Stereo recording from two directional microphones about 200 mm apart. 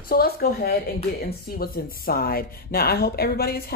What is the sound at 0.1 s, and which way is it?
Speech, 50° left (ahead or behind).